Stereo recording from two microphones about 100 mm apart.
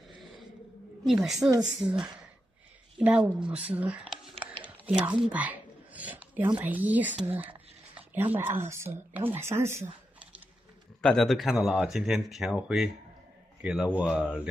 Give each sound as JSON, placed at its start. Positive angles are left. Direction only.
{"t": 1.0, "sound": "speech", "side_deg": -5}
{"t": 11.0, "sound": "speech", "side_deg": 5}